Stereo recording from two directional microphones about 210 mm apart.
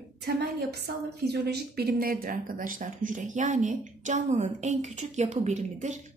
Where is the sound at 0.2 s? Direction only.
50° right (ahead or behind).